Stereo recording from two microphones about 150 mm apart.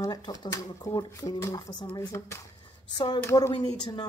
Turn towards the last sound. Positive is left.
turn(degrees=30)  # may be behind; listen again after turning